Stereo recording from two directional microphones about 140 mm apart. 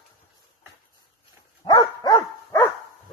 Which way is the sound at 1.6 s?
30° left (ahead or behind).